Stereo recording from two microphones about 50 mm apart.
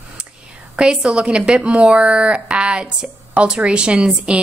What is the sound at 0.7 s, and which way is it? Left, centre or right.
A woman's voice, centre.